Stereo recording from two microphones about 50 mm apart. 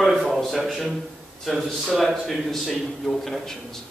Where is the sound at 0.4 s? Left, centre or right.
Centre.